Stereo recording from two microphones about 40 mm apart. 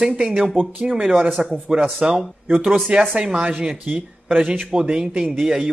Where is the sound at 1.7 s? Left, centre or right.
Right.